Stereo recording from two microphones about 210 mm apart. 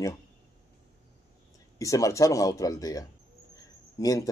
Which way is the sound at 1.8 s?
15° left (ahead or behind).